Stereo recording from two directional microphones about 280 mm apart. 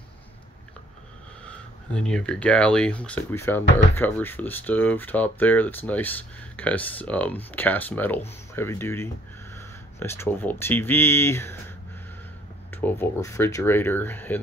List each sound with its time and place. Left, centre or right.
2.0 s speech: centre
12.7 s speech: centre